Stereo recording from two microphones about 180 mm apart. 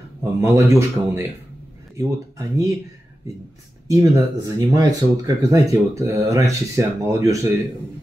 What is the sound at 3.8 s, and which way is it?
Speech, 20° right (ahead or behind).